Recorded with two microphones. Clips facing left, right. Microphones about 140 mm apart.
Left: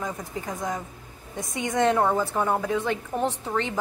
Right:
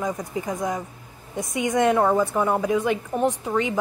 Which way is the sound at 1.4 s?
20° right (ahead or behind).